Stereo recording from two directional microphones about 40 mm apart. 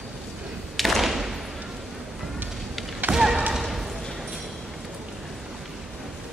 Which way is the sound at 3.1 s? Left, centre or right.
Right.